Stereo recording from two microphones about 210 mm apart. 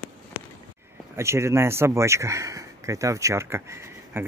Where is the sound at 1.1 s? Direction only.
15° right (ahead or behind).